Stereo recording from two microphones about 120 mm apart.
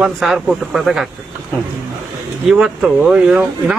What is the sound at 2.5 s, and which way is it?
Speech, 5° right (ahead or behind).